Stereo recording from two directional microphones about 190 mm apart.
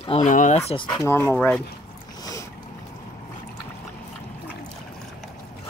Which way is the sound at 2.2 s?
20° left (ahead or behind).